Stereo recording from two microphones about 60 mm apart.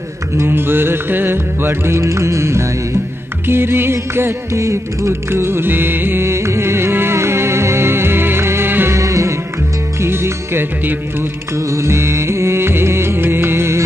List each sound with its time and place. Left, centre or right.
0.4 s music: right
2.0 s music: right
3.4 s music: right
8.9 s music: right
9.9 s music: right
11.5 s music: right